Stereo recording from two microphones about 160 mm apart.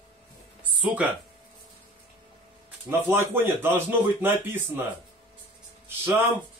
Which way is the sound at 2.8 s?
15° right (ahead or behind).